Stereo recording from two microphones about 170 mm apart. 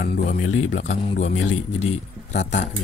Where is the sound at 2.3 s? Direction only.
90° left.